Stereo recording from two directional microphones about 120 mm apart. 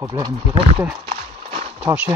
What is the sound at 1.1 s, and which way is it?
Horse, 65° right (ahead or behind).